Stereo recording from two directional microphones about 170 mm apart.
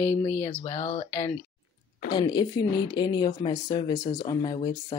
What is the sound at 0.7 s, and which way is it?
Speech, 40° left (ahead or behind).